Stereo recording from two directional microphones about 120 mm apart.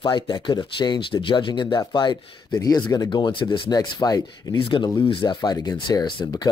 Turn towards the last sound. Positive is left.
turn(degrees=35)  # may be behind; listen again after turning